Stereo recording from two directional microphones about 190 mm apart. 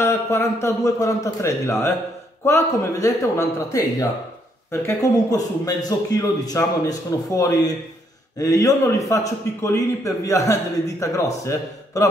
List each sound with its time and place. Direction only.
0.0 s a man's voice: 15° left (ahead or behind)